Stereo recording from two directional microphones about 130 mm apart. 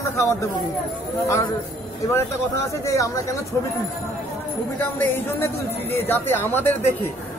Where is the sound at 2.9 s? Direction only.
25° left (ahead or behind).